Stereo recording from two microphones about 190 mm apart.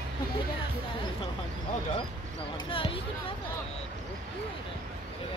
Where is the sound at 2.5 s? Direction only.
25° left (ahead or behind).